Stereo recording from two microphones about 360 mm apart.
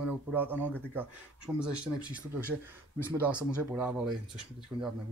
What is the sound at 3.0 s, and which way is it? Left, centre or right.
Speech, centre.